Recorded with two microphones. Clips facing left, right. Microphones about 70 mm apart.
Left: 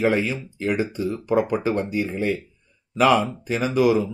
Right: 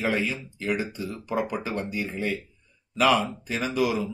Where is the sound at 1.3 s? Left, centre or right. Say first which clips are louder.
Left 7 dB; left.